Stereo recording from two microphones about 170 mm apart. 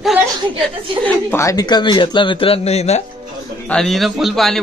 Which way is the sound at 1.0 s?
15° left (ahead or behind).